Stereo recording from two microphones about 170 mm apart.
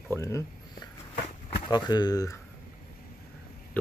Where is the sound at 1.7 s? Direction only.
25° left (ahead or behind).